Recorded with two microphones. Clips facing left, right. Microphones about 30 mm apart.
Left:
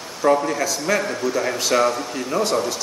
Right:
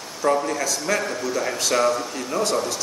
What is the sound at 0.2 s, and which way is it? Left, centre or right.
A man's voice, centre.